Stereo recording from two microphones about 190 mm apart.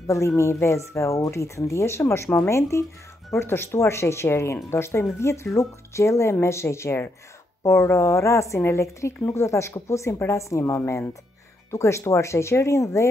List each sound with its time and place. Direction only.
0.0 s a woman's voice: 15° left (ahead or behind)